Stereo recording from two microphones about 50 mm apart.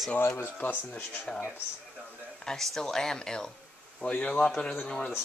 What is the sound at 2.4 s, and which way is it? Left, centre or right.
Speech, centre.